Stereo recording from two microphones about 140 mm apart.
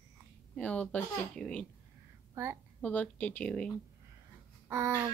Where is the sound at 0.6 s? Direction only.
10° left (ahead or behind).